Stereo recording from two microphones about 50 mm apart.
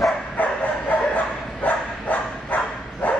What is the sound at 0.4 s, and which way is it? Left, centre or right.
Bow-wow, left.